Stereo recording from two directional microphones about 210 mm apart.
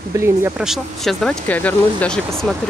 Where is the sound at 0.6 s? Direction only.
Centre (ahead or behind).